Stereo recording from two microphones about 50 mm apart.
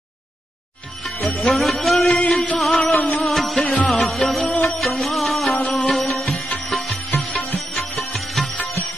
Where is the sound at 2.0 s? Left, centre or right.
Left.